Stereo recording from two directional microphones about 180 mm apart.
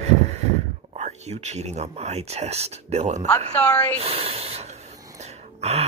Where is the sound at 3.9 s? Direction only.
35° right (ahead or behind).